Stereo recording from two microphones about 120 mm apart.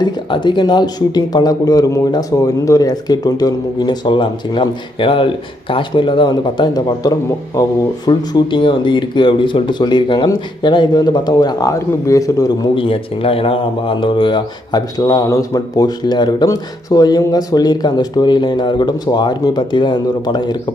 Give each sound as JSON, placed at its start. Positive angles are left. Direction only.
{"t": 0.0, "sound": "speech", "side_deg": 40}
{"t": 12.7, "sound": "speech", "side_deg": 50}